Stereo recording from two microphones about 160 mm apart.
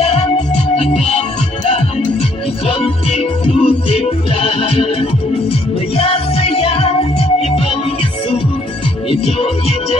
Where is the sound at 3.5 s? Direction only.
35° left (ahead or behind).